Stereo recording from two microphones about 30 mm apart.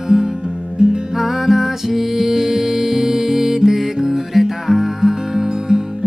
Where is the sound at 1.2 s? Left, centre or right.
Centre.